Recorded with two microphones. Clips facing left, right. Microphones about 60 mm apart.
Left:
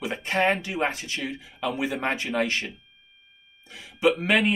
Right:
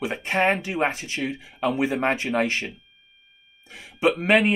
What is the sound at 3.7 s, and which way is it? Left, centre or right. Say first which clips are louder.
Speech: even; right.